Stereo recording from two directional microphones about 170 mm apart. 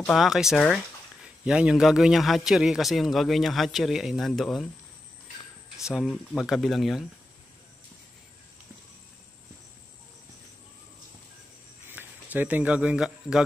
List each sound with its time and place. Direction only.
0.0 s a man's voice: centre (ahead or behind)
5.9 s a man's voice: centre (ahead or behind)
11.9 s speech: 10° right (ahead or behind)